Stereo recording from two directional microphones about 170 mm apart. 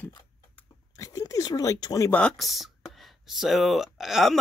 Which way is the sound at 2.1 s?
5° left (ahead or behind).